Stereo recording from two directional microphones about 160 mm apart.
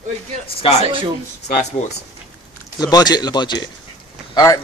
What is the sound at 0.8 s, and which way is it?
Speech, 35° right (ahead or behind).